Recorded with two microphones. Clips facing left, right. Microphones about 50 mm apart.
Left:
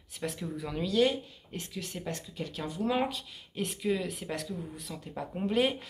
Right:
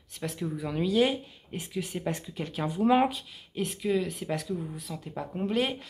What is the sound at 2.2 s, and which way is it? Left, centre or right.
Speech, right.